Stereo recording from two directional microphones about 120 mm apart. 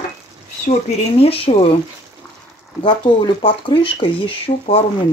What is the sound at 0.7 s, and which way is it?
Speech, 60° left (ahead or behind).